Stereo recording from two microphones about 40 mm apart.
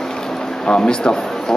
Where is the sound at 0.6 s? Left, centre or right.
Left.